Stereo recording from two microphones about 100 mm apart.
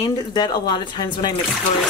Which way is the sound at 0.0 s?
45° left (ahead or behind).